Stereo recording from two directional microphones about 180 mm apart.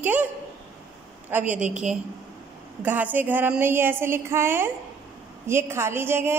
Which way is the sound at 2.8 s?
10° right (ahead or behind).